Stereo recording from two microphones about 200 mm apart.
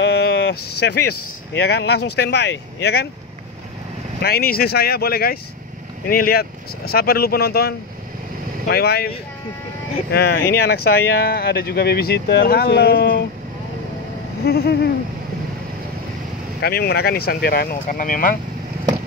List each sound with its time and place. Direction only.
0.0 s speech: 60° left (ahead or behind)
4.2 s speech: 50° left (ahead or behind)
10.1 s speech: 55° left (ahead or behind)
14.4 s speech: 50° left (ahead or behind)
16.6 s speech: 50° left (ahead or behind)